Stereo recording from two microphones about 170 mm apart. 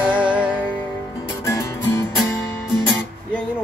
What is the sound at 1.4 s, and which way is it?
Music, 20° left (ahead or behind).